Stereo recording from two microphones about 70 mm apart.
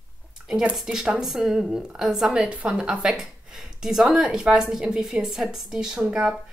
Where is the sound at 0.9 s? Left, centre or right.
Centre.